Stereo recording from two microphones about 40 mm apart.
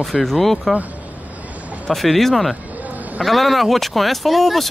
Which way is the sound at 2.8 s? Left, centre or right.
Right.